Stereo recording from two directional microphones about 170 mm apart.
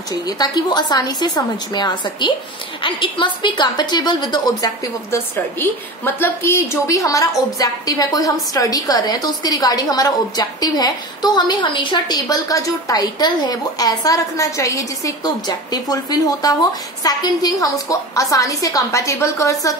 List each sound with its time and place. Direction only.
0.3 s a woman's voice: 25° left (ahead or behind)
5.1 s a woman's voice: 10° left (ahead or behind)